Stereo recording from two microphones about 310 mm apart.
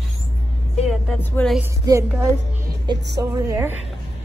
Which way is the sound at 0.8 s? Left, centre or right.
Centre.